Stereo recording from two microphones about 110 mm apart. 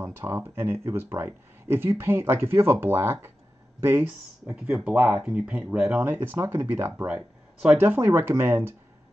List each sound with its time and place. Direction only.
0.0 s speech: 20° right (ahead or behind)